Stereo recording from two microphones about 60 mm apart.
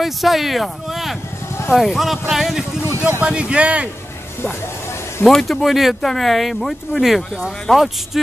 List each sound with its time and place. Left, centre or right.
0.0 s speech: centre
3.2 s speech: centre
5.2 s speech: centre